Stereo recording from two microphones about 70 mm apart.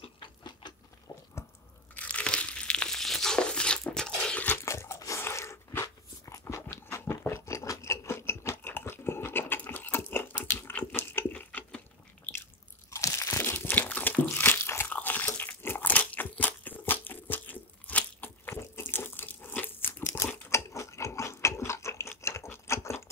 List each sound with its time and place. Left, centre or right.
1.1 s chewing: left
2.0 s tearing: centre
4.6 s biting: left
5.2 s dog: left
10.1 s a sound: left
12.9 s crunch: left
13.4 s crunch: left
14.9 s crunch: left
20.2 s biting: left